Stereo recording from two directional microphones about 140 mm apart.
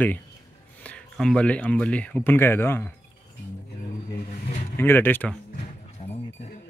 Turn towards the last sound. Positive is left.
turn(degrees=50)  # may be behind; listen again after turning